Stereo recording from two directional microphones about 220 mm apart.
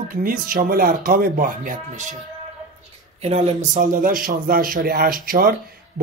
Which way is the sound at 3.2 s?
30° right (ahead or behind).